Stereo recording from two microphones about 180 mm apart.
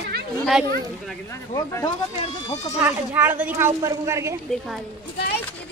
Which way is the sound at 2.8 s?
10° right (ahead or behind).